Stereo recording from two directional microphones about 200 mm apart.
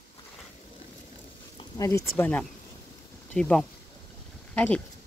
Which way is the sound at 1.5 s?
15° left (ahead or behind).